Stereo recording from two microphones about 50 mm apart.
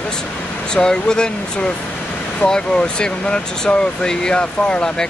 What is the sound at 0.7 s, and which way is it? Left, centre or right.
Speech, centre.